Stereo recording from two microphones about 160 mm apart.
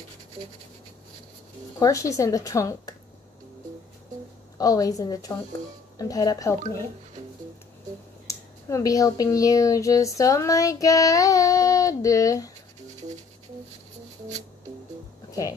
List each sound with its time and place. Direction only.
1.8 s speech: 20° left (ahead or behind)
4.6 s speech: 20° left (ahead or behind)
8.3 s speech: 20° left (ahead or behind)
12.9 s music: 45° right (ahead or behind)